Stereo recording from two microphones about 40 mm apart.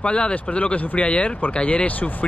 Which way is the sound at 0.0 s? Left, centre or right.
Left.